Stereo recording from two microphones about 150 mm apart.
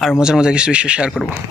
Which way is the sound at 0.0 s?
5° right (ahead or behind).